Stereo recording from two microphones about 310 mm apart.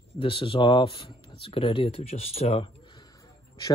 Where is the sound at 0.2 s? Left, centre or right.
Centre.